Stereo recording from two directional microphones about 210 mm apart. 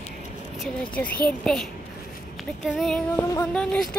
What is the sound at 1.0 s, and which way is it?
Speech, 10° left (ahead or behind).